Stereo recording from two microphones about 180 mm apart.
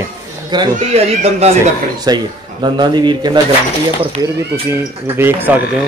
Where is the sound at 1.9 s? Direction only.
25° right (ahead or behind).